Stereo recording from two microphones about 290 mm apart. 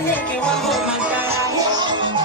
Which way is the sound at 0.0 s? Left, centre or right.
Centre.